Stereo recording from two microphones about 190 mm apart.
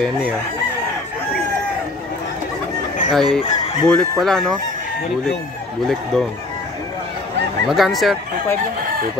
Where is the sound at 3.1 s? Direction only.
Centre (ahead or behind).